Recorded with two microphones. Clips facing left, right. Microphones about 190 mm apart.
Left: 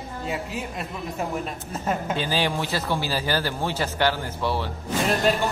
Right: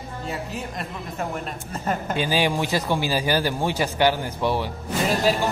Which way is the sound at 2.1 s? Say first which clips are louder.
Right 5 dB; 15° right (ahead or behind).